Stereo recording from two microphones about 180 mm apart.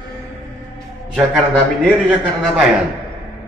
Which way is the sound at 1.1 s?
5° left (ahead or behind).